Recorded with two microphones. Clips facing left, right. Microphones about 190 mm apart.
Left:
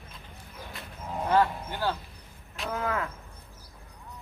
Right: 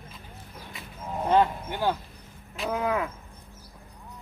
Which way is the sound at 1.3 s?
20° right (ahead or behind).